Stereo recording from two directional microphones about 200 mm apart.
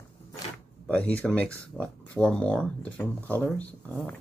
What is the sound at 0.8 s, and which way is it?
Speech, 5° left (ahead or behind).